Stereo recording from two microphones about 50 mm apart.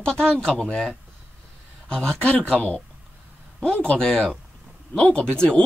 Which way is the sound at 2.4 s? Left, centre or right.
Left.